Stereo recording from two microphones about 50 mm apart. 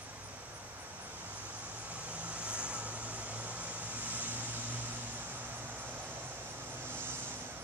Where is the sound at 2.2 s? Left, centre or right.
Right.